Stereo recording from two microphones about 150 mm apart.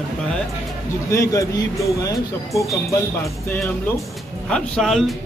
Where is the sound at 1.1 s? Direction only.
20° left (ahead or behind).